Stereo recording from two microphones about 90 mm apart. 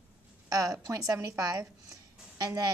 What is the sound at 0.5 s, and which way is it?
A woman's voice, 40° right (ahead or behind).